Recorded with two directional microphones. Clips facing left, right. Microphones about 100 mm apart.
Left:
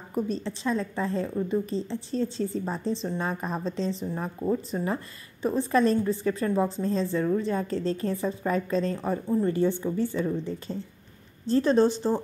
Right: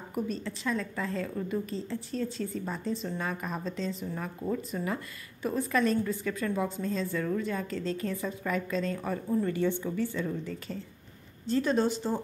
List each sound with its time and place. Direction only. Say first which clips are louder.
0.1 s a woman's voice: left 4 dB; 30° left (ahead or behind)